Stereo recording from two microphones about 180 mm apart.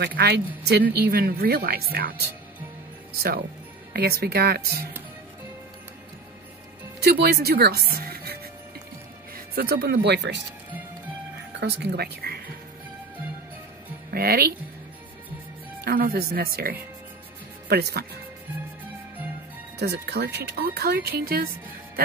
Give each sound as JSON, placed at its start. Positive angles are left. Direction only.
{"t": 0.0, "sound": "speech", "side_deg": -65}
{"t": 7.0, "sound": "speech", "side_deg": -60}
{"t": 11.6, "sound": "speech", "side_deg": -65}
{"t": 14.1, "sound": "speech", "side_deg": -60}
{"t": 15.8, "sound": "speech", "side_deg": -55}
{"t": 19.8, "sound": "speech", "side_deg": -65}